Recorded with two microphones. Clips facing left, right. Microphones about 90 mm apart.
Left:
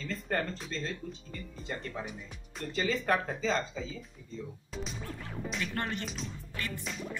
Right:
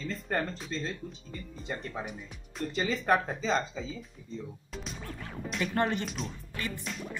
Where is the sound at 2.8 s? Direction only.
20° right (ahead or behind).